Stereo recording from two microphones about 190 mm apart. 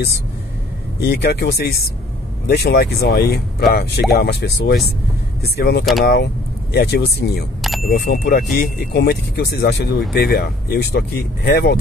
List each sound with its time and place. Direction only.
1.0 s speech: 55° left (ahead or behind)